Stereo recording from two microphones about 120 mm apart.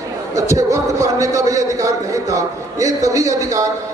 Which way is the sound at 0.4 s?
25° right (ahead or behind).